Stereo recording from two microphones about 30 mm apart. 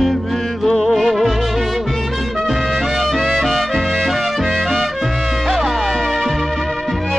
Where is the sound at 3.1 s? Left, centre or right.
Centre.